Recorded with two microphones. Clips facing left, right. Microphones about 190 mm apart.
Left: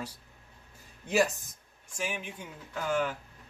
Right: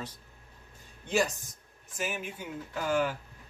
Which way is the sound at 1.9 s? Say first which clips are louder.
Right 1 dB; 5° right (ahead or behind).